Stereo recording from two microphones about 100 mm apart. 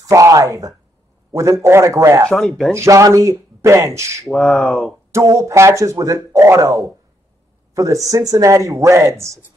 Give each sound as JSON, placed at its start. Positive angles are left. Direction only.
{"t": 0.0, "sound": "speech", "side_deg": -30}
{"t": 2.2, "sound": "speech", "side_deg": 5}
{"t": 2.7, "sound": "speech", "side_deg": -30}
{"t": 4.3, "sound": "speech", "side_deg": 0}
{"t": 5.1, "sound": "speech", "side_deg": -30}